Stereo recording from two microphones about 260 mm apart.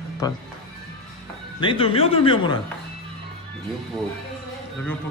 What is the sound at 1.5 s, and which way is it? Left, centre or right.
A man's voice, centre.